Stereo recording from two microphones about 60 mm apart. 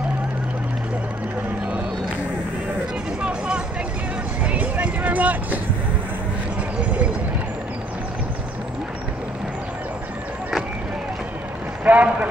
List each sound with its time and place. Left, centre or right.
3.2 s a sound: centre
4.4 s music: right
11.8 s a man's voice: right